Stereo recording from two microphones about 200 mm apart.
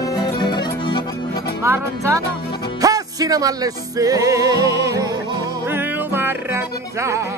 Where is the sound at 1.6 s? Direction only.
15° right (ahead or behind).